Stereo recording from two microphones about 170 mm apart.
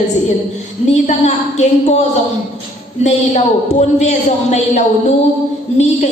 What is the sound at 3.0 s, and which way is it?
A woman's voice, 40° left (ahead or behind).